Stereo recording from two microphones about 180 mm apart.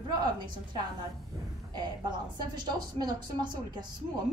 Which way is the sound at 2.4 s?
25° right (ahead or behind).